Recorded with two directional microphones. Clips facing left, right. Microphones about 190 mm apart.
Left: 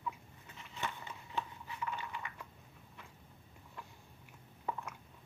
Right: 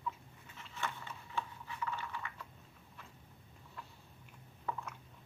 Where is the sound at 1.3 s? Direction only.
15° left (ahead or behind).